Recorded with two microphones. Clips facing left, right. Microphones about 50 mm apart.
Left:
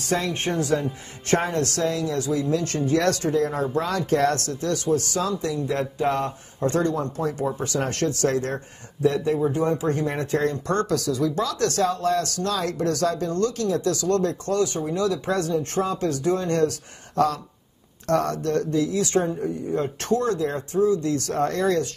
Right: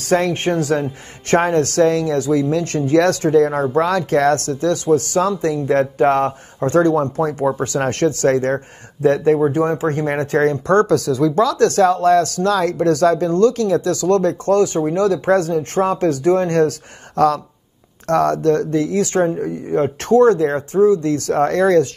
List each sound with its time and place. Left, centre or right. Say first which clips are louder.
0.0 s speech: right 8 dB; right
0.6 s speech: right 5 dB; right
1.8 s speech: right 9 dB; right
6.6 s speech: right 8 dB; right
9.0 s speech: right 7 dB; right
16.0 s speech: right 8 dB; right
21.4 s speech: right 9 dB; right